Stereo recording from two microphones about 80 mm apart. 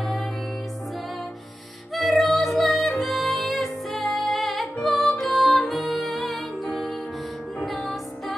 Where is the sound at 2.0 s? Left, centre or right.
Centre.